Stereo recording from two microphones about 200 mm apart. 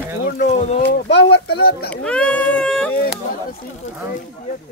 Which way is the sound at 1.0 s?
60° left (ahead or behind).